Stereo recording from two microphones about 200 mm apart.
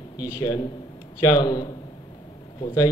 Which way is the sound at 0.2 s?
20° left (ahead or behind).